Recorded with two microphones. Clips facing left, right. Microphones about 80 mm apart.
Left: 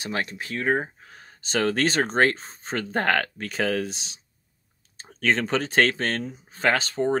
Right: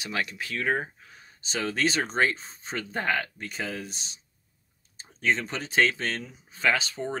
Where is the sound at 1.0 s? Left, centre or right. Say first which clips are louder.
Left 2 dB; left.